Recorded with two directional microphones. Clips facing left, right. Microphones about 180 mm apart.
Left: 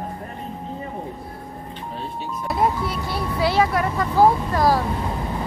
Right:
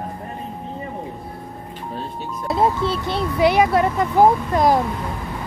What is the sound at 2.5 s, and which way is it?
Speech, 25° right (ahead or behind).